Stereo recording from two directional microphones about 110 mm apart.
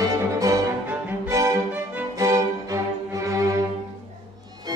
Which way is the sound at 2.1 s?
30° right (ahead or behind).